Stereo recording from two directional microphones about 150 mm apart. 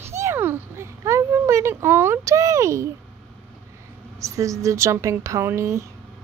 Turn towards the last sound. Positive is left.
turn(degrees=-20)  # may be behind; listen again after turning